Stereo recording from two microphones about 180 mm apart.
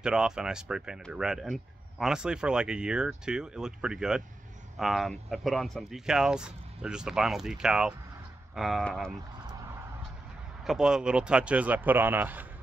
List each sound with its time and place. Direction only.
0.0 s speech: 5° right (ahead or behind)
9.1 s a sound: 20° right (ahead or behind)
10.6 s a man's voice: centre (ahead or behind)